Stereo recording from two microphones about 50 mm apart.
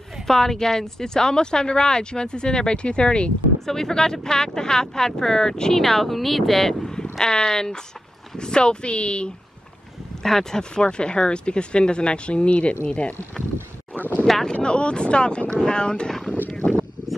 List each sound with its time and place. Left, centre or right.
0.3 s speech: centre
3.6 s speech: centre
10.2 s speech: centre
14.2 s speech: centre
14.5 s speech: centre